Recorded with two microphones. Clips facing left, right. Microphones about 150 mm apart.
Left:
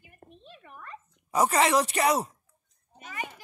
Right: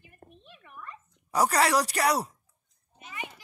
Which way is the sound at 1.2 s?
10° left (ahead or behind).